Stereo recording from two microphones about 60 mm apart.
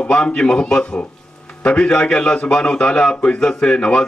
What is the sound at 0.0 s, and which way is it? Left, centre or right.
A man's voice, centre.